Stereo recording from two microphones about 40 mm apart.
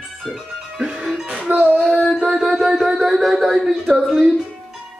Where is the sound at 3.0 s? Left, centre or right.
Centre.